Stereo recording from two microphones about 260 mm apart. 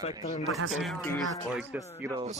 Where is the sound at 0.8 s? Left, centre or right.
Centre.